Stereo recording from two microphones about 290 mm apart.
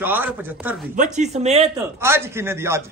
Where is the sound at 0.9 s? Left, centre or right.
Right.